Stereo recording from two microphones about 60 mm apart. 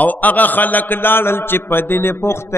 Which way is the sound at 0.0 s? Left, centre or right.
Left.